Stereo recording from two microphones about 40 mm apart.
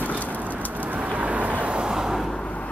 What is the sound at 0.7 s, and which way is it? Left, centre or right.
Vehicle, right.